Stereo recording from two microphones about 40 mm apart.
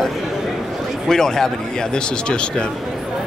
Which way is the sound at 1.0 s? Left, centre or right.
Centre.